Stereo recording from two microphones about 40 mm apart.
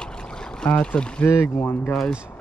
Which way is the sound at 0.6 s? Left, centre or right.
Left.